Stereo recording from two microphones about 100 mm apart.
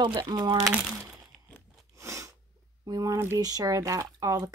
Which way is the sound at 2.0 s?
30° right (ahead or behind).